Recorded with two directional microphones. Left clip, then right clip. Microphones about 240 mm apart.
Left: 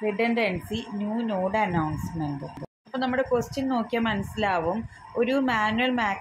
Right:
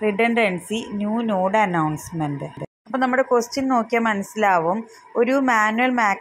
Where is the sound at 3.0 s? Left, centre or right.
Right.